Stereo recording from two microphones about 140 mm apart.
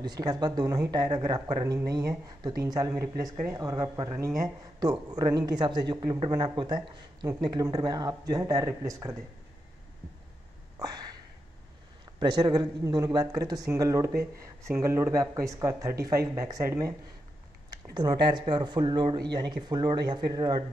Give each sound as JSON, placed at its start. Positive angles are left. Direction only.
{"t": 0.0, "sound": "speech", "side_deg": -30}
{"t": 10.8, "sound": "a sound", "side_deg": -30}
{"t": 12.3, "sound": "speech", "side_deg": -30}